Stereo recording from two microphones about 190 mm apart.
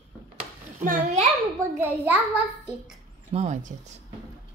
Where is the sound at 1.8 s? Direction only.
10° right (ahead or behind).